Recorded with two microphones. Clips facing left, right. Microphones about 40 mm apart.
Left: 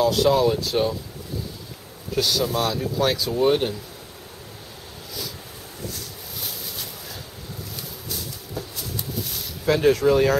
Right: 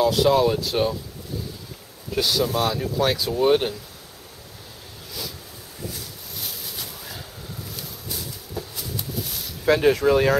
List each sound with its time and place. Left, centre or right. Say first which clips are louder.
0.0 s speech: even; centre
2.1 s speech: even; centre
5.9 s a sound: left 1 dB; centre
9.8 s speech: left 2 dB; centre